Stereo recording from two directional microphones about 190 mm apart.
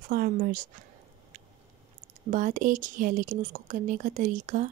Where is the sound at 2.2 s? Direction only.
45° right (ahead or behind).